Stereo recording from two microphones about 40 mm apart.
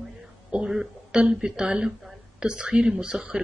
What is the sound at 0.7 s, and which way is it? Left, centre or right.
A woman's voice, centre.